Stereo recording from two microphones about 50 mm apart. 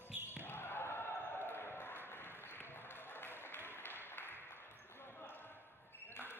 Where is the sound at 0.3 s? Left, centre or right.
Left.